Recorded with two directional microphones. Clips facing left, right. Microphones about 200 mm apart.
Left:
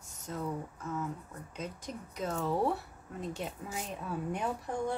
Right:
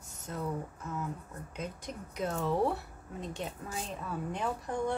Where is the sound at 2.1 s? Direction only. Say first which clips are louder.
Right 1 dB; centre (ahead or behind).